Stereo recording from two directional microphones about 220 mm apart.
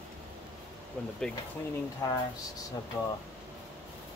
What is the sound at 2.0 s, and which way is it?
Speech, 15° left (ahead or behind).